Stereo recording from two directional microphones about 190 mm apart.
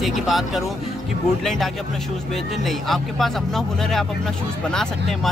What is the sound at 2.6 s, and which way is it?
Speech, centre (ahead or behind).